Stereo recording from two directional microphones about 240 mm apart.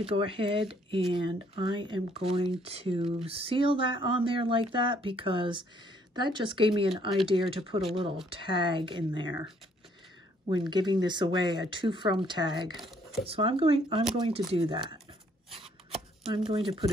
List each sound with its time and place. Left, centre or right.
0.0 s speech: right
10.5 s speech: centre
12.7 s speech: centre
13.3 s speech: right
15.5 s a sound: right